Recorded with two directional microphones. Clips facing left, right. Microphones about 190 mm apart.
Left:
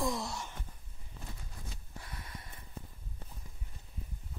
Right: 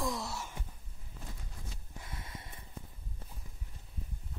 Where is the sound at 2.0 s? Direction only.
20° right (ahead or behind).